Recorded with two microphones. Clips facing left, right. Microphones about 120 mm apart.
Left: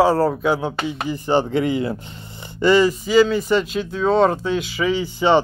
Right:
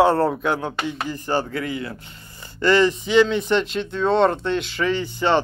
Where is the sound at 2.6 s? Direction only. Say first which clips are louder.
Left 2 dB; 10° left (ahead or behind).